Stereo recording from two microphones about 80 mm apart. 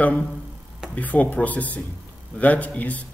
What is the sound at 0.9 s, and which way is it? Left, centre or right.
A man's voice, centre.